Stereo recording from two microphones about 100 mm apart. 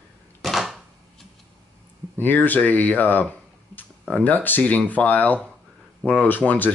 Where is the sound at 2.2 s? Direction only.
20° left (ahead or behind).